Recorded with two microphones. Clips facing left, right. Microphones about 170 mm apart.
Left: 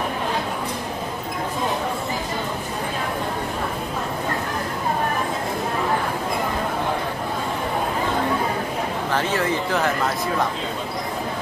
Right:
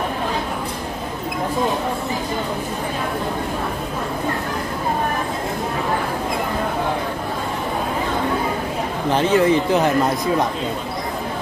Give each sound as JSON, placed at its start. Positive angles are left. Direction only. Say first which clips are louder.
{"t": 9.1, "sound": "speech", "louder": "right 8 dB", "side_deg": -20}